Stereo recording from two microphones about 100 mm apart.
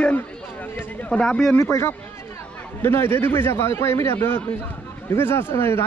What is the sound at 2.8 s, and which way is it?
A man's voice, 25° left (ahead or behind).